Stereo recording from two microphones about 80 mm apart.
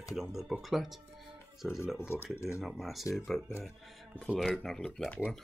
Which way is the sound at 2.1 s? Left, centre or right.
Left.